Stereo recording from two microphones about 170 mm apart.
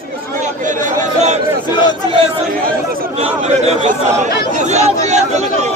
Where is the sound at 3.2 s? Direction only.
35° right (ahead or behind).